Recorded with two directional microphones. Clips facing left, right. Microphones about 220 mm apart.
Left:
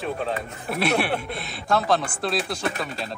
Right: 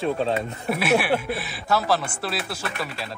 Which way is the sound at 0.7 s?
Centre (ahead or behind).